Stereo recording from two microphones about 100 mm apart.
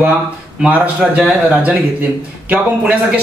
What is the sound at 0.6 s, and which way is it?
Speech, 15° right (ahead or behind).